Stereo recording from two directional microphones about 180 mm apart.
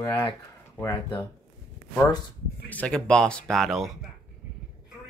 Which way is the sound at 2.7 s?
5° left (ahead or behind).